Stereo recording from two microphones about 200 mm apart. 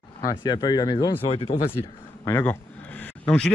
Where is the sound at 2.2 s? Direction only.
10° left (ahead or behind).